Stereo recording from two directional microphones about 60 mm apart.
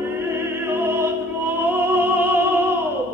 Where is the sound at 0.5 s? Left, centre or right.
Right.